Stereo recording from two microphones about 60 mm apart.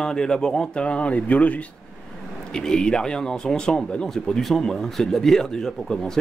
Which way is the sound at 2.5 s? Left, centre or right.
Centre.